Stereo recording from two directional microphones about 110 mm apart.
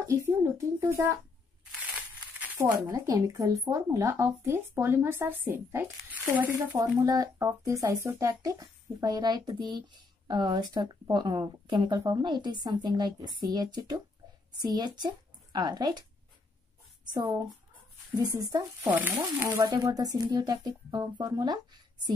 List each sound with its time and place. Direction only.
0.4 s speech: 25° right (ahead or behind)
2.4 s speech: 20° right (ahead or behind)
6.8 s speech: 30° right (ahead or behind)
17.0 s speech: 40° right (ahead or behind)
18.9 s speech: 15° right (ahead or behind)
19.6 s speech: 35° right (ahead or behind)